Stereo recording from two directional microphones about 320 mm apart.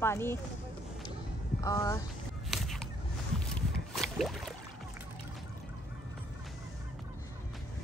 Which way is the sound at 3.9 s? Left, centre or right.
Centre.